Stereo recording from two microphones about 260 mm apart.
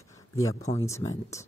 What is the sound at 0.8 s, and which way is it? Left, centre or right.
Speech, centre.